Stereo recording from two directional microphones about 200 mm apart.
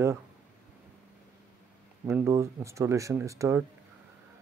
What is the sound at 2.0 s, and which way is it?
Speech, 15° right (ahead or behind).